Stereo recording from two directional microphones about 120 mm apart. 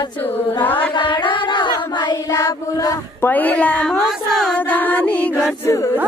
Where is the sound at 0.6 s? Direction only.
15° left (ahead or behind).